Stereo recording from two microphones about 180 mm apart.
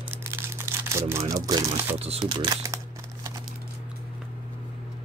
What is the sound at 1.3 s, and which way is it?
Speech, 20° right (ahead or behind).